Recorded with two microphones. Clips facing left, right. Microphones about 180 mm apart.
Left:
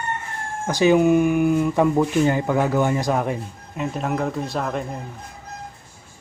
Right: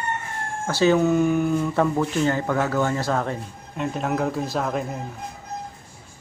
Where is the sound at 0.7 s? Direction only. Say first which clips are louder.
Left 3 dB; 15° left (ahead or behind).